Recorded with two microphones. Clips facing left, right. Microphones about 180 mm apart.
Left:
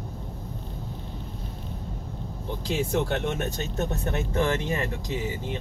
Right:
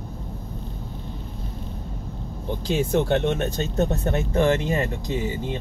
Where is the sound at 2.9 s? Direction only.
30° right (ahead or behind).